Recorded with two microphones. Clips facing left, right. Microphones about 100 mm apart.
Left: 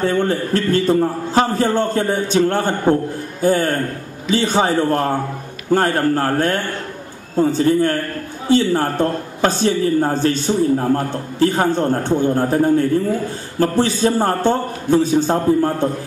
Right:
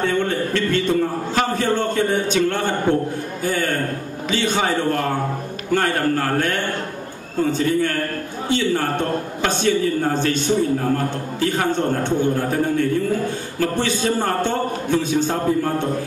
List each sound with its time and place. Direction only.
0.0 s a man's voice: 40° left (ahead or behind)